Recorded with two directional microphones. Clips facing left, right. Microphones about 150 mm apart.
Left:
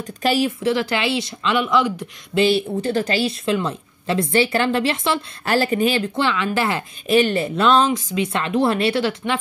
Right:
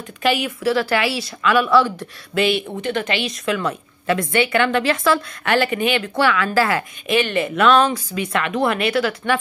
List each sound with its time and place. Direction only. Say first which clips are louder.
0.2 s a woman's voice: left 1 dB; 35° left (ahead or behind)
0.6 s speech: right 2 dB; 20° left (ahead or behind)
2.3 s a woman's voice: left 2 dB; 35° left (ahead or behind)
6.1 s speech: right 3 dB; 25° left (ahead or behind)
7.1 s speech: left 3 dB; 35° left (ahead or behind)